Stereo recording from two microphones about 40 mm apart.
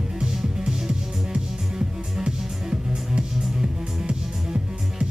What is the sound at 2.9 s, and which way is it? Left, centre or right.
Music, centre.